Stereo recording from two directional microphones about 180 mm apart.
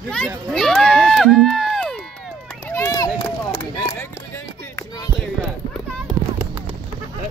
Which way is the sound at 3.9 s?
10° left (ahead or behind).